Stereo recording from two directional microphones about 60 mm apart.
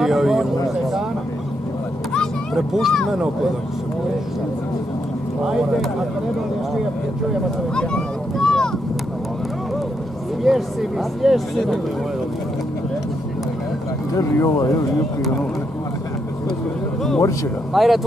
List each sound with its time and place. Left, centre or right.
0.0 s speech: centre
2.5 s speech: centre
7.7 s vehicle: centre
10.4 s speech: centre
14.1 s speech: left
14.6 s speech: left
17.7 s speech: centre